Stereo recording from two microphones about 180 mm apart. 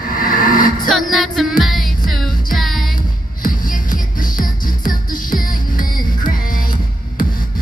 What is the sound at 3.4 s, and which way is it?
Music, 50° left (ahead or behind).